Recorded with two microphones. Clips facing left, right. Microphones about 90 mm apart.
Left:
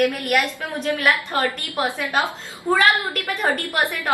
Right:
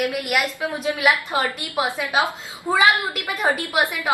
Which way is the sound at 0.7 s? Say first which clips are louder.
Even; 10° right (ahead or behind).